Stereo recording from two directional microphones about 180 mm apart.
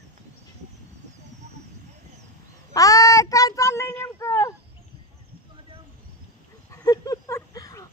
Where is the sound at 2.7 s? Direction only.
20° left (ahead or behind).